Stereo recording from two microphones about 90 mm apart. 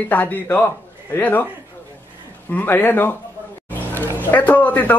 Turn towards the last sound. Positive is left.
turn(degrees=20)  # may be behind; listen again after turning